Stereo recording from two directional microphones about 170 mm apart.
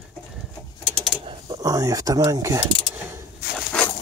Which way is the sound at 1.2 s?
30° right (ahead or behind).